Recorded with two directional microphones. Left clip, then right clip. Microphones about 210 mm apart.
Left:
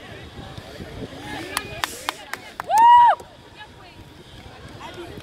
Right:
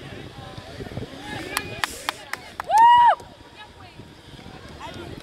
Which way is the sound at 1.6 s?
40° right (ahead or behind).